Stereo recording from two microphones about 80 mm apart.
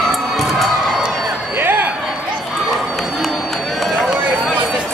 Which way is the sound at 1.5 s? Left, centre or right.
Right.